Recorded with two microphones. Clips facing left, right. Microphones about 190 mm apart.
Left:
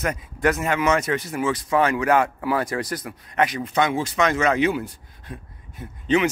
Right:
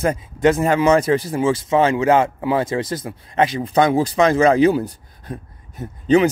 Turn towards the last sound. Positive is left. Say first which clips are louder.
# right 6 dB
turn(degrees=-40)  # may be behind; listen again after turning